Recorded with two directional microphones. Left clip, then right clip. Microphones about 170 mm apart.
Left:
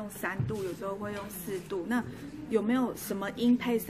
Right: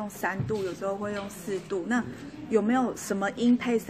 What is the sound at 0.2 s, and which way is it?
A woman's voice, 15° right (ahead or behind).